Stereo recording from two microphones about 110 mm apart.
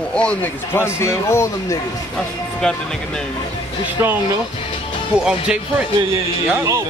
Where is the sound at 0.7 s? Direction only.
25° left (ahead or behind).